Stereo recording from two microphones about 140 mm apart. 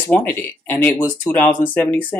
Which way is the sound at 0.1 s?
15° left (ahead or behind).